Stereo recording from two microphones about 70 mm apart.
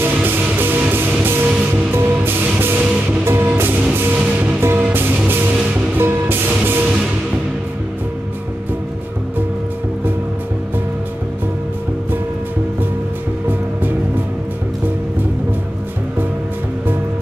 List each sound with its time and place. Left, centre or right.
0.0 s music: right
4.6 s music: right